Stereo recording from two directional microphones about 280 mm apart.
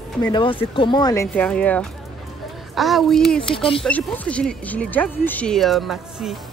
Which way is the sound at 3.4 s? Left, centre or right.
Centre.